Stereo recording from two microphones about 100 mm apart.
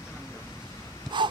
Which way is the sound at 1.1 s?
50° right (ahead or behind).